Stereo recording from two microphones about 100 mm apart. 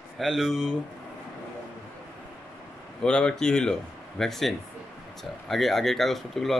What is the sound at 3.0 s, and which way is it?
Speech, 10° left (ahead or behind).